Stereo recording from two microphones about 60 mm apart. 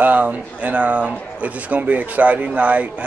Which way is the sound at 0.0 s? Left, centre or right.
Right.